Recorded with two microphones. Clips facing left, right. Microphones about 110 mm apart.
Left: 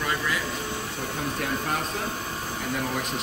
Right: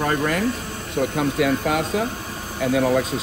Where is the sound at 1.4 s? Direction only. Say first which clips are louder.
Right 9 dB; 90° right.